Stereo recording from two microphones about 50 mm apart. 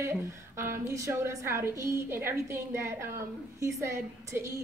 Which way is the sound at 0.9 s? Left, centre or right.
Right.